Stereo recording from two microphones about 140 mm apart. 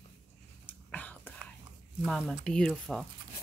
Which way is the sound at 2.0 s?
Centre (ahead or behind).